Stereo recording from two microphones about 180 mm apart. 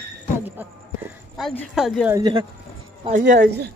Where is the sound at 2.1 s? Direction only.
25° right (ahead or behind).